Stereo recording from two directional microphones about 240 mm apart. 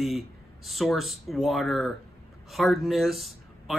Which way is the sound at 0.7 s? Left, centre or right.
Centre.